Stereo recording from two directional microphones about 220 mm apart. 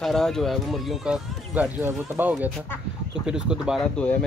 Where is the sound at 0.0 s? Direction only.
Centre (ahead or behind).